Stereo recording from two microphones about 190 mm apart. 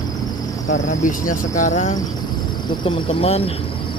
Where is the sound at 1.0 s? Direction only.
40° left (ahead or behind).